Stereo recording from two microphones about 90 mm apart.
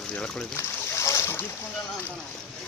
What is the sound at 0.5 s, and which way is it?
Splash, 35° left (ahead or behind).